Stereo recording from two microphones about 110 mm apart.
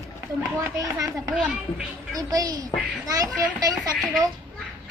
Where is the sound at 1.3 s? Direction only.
10° right (ahead or behind).